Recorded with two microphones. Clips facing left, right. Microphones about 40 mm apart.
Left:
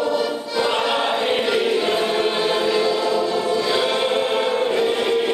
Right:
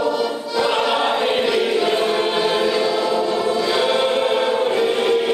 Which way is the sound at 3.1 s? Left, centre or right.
Right.